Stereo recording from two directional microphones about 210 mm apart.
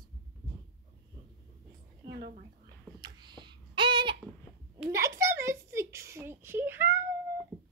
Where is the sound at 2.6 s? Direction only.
20° right (ahead or behind).